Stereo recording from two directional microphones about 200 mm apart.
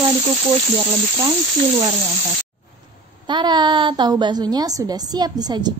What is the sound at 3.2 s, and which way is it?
A woman's voice, 20° right (ahead or behind).